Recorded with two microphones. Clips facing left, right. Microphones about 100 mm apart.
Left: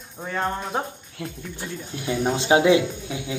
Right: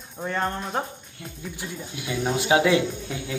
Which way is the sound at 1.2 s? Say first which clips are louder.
Left 8 dB; 90° left.